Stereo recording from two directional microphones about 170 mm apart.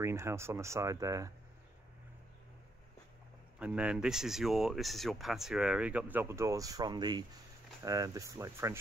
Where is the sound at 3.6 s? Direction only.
5° right (ahead or behind).